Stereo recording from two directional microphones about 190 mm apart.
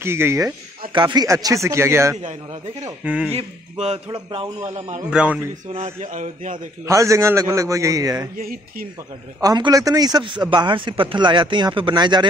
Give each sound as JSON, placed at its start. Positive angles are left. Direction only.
{"t": 0.0, "sound": "a man's voice", "side_deg": -15}
{"t": 3.3, "sound": "a man's voice", "side_deg": -35}
{"t": 5.1, "sound": "a man's voice", "side_deg": -5}
{"t": 5.5, "sound": "a man's voice", "side_deg": -35}
{"t": 6.9, "sound": "a man's voice", "side_deg": -15}
{"t": 8.4, "sound": "speech", "side_deg": -50}
{"t": 9.4, "sound": "a man's voice", "side_deg": -20}